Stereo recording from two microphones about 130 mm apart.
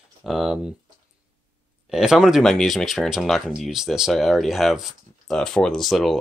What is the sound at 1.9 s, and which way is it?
Speech, 5° right (ahead or behind).